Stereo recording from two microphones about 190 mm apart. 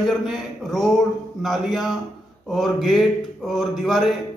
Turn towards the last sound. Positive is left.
turn(degrees=0)  # may be behind; listen again after turning